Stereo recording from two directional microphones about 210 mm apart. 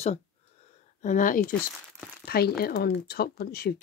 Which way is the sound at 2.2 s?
45° left (ahead or behind).